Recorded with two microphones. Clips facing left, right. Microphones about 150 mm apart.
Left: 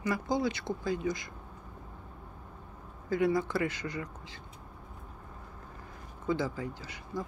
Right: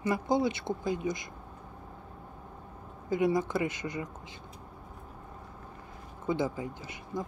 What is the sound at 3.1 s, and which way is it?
Speech, 20° right (ahead or behind).